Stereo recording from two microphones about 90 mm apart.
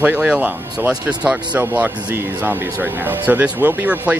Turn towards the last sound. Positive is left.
turn(degrees=-15)  # may be behind; listen again after turning